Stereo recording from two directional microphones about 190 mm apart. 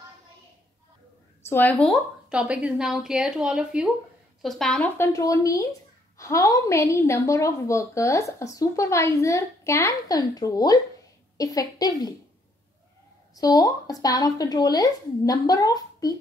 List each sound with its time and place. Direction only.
1.4 s a woman's voice: 10° left (ahead or behind)
13.4 s speech: 20° left (ahead or behind)